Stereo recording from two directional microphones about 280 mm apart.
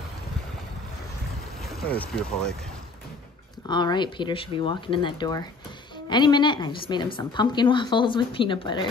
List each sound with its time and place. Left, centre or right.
1.6 s speech: centre
3.6 s a woman's voice: centre